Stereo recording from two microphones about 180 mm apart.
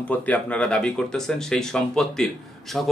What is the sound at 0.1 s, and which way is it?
Speech, 10° left (ahead or behind).